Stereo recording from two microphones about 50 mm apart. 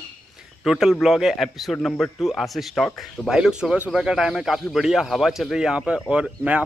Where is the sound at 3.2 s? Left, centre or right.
Centre.